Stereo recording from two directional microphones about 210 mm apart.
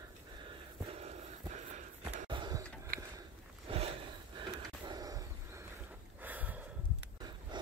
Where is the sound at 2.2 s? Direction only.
20° right (ahead or behind).